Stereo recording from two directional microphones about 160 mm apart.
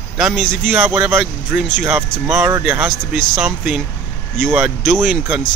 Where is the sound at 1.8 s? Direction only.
10° right (ahead or behind).